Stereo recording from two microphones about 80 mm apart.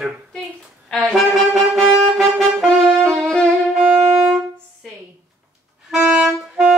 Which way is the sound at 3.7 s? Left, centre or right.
Centre.